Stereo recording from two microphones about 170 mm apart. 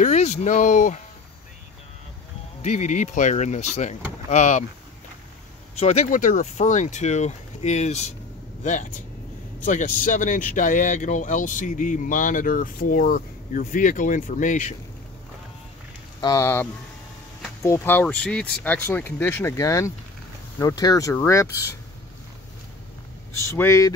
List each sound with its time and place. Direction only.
0.0 s speech: 40° left (ahead or behind)
2.6 s speech: 45° left (ahead or behind)
5.8 s speech: 40° left (ahead or behind)
16.2 s speech: 20° left (ahead or behind)
23.5 s speech: 15° left (ahead or behind)